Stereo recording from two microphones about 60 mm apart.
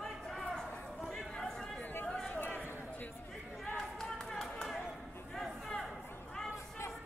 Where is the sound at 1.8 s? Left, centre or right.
Left.